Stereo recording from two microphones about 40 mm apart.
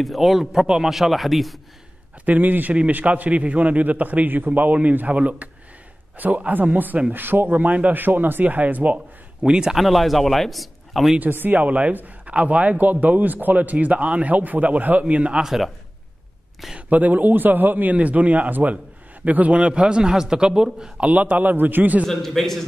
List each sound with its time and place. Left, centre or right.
0.0 s a man's voice: centre
0.8 s speech: centre
2.2 s a man's voice: right
7.1 s a man's voice: right
7.5 s a man's voice: right
7.9 s a man's voice: right
9.4 s a woman's voice: centre
9.8 s speech: centre
11.3 s speech: right
11.6 s a man's voice: right
15.4 s speech: centre
16.9 s a man's voice: right; by 20.9 s centre
21.0 s a man's voice: right
22.0 s a man's voice: centre